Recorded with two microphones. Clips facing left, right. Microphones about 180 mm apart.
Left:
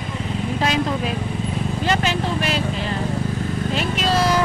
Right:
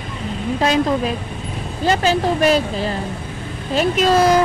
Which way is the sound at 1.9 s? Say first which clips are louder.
Right 6 dB; 35° right (ahead or behind).